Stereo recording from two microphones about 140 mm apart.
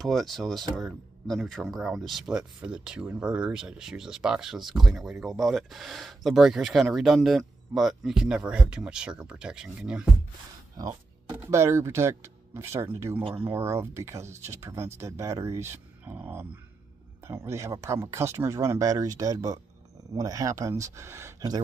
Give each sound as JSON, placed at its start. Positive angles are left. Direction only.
{"t": 0.0, "sound": "speech", "side_deg": 0}
{"t": 10.8, "sound": "music", "side_deg": -25}
{"t": 11.4, "sound": "speech", "side_deg": -20}
{"t": 13.2, "sound": "speech", "side_deg": -40}
{"t": 13.5, "sound": "speech", "side_deg": -20}